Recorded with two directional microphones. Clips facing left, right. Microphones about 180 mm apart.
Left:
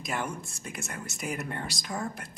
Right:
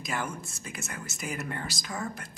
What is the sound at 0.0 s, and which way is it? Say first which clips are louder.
Speech: left 1 dB; centre (ahead or behind).